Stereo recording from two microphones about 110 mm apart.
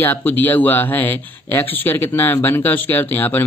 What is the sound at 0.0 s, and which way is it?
Speech, 15° left (ahead or behind).